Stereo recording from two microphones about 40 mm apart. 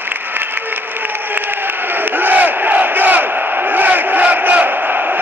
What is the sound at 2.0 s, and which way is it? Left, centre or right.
Crowd, right.